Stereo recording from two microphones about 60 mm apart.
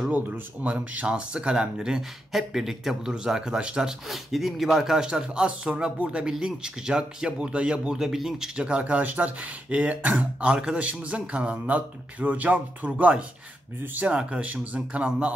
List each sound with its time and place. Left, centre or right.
0.1 s speech: right
4.1 s speech: centre; by 15.3 s right